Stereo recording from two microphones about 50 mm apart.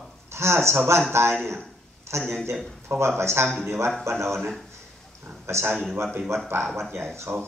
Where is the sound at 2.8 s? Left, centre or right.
Right.